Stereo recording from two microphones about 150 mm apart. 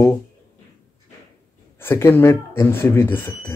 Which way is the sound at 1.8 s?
15° left (ahead or behind).